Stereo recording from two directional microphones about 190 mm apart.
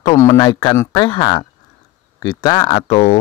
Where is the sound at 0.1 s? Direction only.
20° left (ahead or behind).